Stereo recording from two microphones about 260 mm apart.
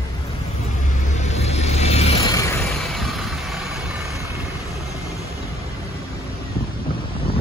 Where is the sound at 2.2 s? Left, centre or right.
Centre.